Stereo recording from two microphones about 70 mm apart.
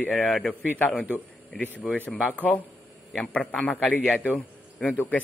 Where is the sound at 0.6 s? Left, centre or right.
Left.